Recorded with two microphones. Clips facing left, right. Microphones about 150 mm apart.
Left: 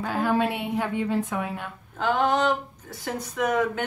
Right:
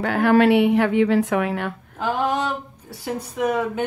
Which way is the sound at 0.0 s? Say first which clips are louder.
Right 8 dB; 75° right (ahead or behind).